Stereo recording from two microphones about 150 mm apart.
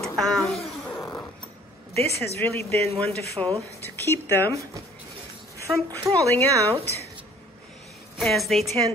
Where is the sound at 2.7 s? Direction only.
45° right (ahead or behind).